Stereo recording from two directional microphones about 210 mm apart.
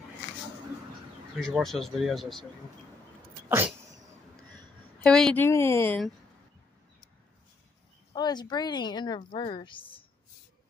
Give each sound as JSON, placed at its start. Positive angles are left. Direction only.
{"t": 1.4, "sound": "speech", "side_deg": 0}
{"t": 3.4, "sound": "a sound", "side_deg": -10}
{"t": 5.0, "sound": "a woman's voice", "side_deg": 5}
{"t": 8.1, "sound": "a woman's voice", "side_deg": 20}